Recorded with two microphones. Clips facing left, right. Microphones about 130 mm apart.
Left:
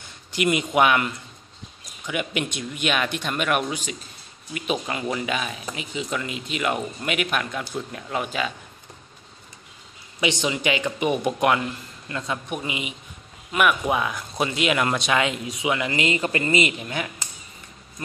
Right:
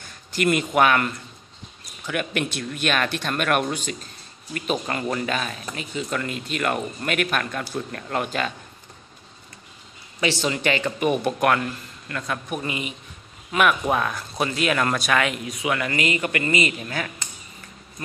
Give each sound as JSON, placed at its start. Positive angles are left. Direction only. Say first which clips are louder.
{"t": 0.3, "sound": "speech", "louder": "right 1 dB", "side_deg": 15}
{"t": 10.2, "sound": "speech", "louder": "right 1 dB", "side_deg": 15}